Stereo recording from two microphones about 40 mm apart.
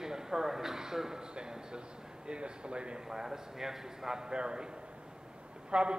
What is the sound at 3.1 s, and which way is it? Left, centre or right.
A man's voice, centre.